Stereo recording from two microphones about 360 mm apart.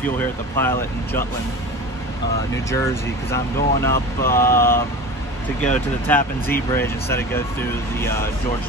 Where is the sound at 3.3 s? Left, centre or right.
Centre.